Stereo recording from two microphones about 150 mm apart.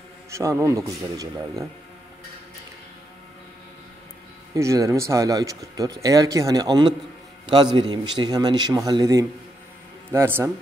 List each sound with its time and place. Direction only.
0.3 s a man's voice: 20° right (ahead or behind)
4.6 s a man's voice: 20° right (ahead or behind)